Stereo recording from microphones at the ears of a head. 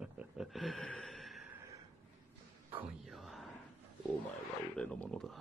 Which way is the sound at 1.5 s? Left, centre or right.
Right.